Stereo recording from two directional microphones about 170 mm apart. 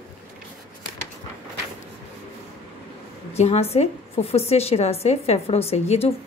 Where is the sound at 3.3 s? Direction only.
40° left (ahead or behind).